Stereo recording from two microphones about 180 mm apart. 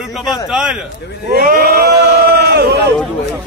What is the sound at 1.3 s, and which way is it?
Speech, 55° right (ahead or behind).